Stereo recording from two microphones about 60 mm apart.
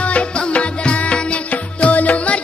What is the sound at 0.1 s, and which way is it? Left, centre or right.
Music, left.